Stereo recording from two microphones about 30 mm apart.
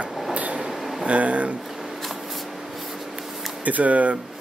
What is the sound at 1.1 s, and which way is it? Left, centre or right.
Speech, right.